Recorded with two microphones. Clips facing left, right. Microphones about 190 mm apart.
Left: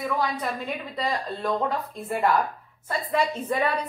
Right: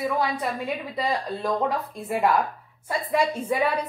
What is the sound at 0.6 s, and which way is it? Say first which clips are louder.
A woman's voice: right 2 dB; 10° right (ahead or behind).